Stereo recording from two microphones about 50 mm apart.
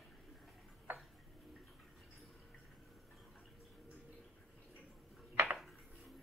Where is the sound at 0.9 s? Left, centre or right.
Right.